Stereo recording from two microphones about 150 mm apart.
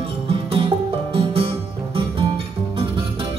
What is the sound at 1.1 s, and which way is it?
Music, 40° right (ahead or behind).